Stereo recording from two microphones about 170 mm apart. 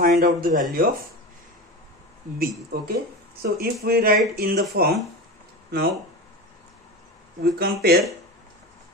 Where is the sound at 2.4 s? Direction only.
65° right (ahead or behind).